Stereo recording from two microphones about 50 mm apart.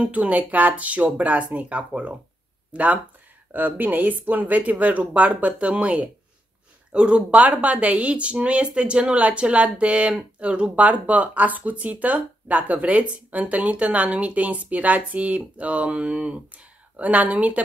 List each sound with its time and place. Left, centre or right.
0.0 s speech: right